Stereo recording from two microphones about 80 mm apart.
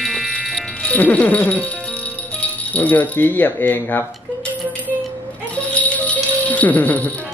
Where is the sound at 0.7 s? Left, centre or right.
Centre.